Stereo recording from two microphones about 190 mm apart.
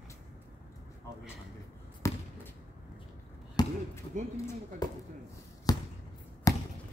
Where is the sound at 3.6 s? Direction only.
20° left (ahead or behind).